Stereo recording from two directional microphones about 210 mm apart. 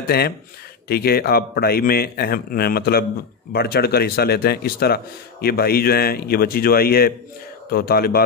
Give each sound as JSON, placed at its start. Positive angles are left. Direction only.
{"t": 0.1, "sound": "speech", "side_deg": 45}